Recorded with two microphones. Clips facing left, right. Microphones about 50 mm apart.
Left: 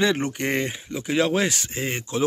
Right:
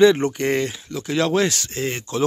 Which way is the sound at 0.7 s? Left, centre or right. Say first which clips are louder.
Even; centre.